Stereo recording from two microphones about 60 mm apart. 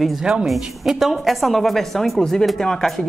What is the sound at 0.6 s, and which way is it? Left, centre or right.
A woman's voice, centre.